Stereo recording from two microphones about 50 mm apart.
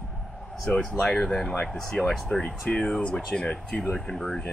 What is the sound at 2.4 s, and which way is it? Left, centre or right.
Speech, left.